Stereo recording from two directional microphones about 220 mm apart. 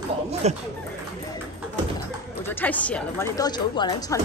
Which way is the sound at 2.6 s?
5° left (ahead or behind).